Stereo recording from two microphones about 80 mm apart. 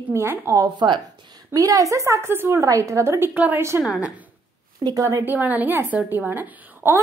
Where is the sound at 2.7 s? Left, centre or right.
Right.